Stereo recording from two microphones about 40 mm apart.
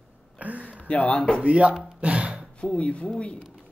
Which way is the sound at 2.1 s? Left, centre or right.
Right.